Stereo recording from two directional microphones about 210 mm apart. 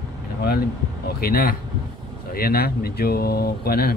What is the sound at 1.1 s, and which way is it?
Speech, 45° left (ahead or behind).